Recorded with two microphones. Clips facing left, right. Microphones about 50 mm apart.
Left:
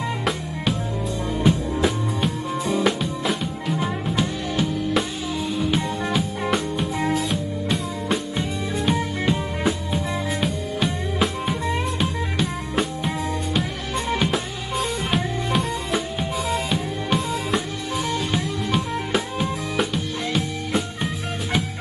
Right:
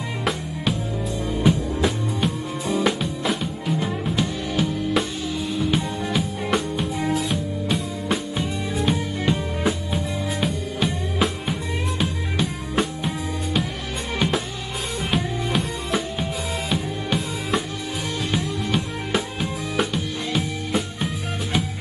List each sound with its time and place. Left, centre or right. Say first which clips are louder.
1.4 s music: even; centre
15.0 s music: left 1 dB; centre